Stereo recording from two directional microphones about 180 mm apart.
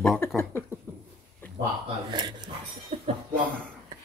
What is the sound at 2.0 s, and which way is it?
Speech, 25° right (ahead or behind).